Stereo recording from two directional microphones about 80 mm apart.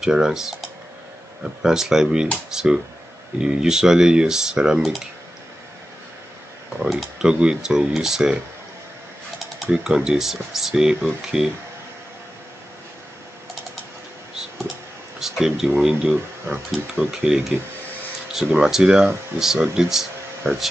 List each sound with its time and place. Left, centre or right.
0.0 s speech: centre
6.8 s speech: centre
9.7 s speech: centre
15.1 s a sound: centre
15.8 s speech: centre
16.5 s speech: centre
17.1 s speech: centre